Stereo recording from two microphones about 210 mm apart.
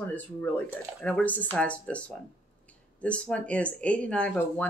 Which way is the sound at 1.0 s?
5° left (ahead or behind).